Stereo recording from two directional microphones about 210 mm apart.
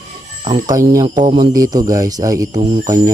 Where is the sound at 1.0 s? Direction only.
20° right (ahead or behind).